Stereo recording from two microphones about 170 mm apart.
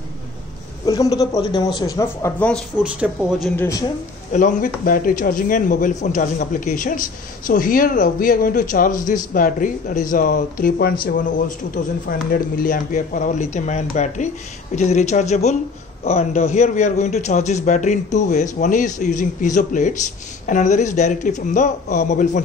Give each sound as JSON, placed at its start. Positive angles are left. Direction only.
{"t": 0.8, "sound": "a man's voice", "side_deg": 20}
{"t": 2.8, "sound": "speech", "side_deg": -5}
{"t": 3.5, "sound": "a man's voice", "side_deg": 20}
{"t": 4.3, "sound": "speech", "side_deg": 50}